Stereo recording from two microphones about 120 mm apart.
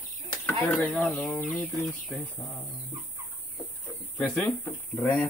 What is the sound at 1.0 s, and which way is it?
Speech, centre (ahead or behind).